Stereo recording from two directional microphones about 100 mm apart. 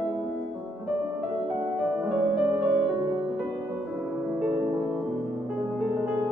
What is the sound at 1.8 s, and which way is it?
Music, 15° right (ahead or behind).